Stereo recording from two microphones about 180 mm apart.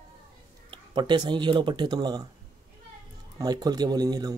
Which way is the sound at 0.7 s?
25° right (ahead or behind).